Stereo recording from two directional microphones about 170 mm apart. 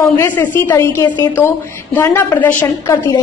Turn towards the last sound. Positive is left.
turn(degrees=15)  # may be behind; listen again after turning